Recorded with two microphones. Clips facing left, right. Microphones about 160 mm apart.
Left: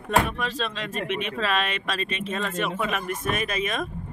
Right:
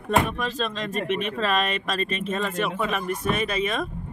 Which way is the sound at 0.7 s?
35° right (ahead or behind).